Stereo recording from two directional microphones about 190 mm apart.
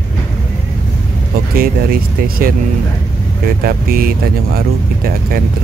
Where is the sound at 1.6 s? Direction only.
50° right (ahead or behind).